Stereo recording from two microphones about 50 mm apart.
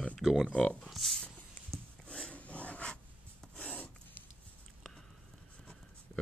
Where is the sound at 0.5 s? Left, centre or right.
Left.